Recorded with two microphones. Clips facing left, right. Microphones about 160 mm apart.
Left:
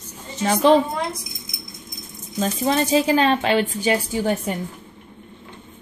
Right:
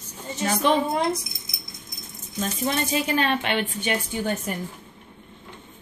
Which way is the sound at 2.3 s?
35° left (ahead or behind).